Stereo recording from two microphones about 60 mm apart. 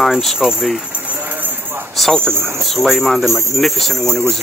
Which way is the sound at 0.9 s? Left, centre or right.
Right.